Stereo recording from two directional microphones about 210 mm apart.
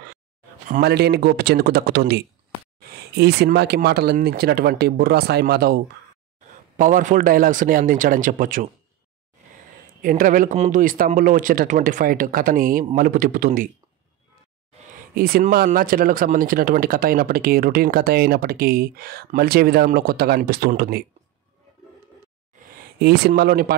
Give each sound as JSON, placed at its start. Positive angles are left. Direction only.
{"t": 0.7, "sound": "speech", "side_deg": -50}
{"t": 6.8, "sound": "speech", "side_deg": -35}
{"t": 10.0, "sound": "speech", "side_deg": -40}
{"t": 15.1, "sound": "speech", "side_deg": -45}
{"t": 22.9, "sound": "speech", "side_deg": -50}